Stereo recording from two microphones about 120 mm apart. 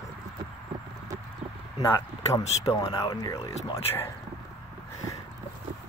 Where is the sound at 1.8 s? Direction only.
25° left (ahead or behind).